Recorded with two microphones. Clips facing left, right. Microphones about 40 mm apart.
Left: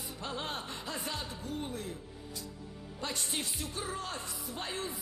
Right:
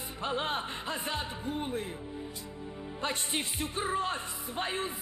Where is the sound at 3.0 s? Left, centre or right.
Right.